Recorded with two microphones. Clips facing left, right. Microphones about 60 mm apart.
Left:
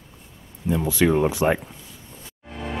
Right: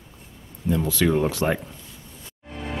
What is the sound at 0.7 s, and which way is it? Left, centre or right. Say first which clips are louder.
Speech: left 2 dB; centre.